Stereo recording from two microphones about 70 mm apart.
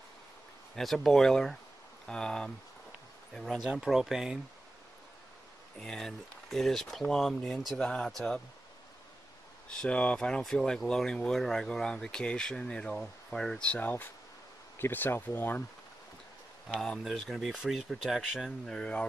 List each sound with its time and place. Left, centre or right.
0.7 s speech: centre
3.7 s speech: centre
5.8 s speech: centre
9.7 s speech: centre
17.0 s speech: centre
18.7 s speech: centre